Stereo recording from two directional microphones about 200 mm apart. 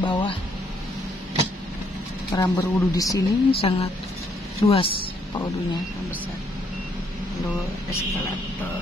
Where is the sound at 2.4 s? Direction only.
15° left (ahead or behind).